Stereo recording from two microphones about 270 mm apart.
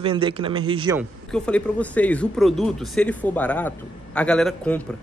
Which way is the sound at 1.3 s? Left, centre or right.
Centre.